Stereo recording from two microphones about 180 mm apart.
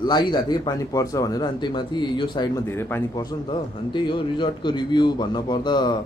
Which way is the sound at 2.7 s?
15° left (ahead or behind).